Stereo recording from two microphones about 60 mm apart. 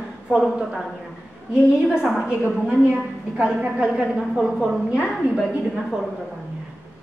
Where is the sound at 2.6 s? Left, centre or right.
Centre.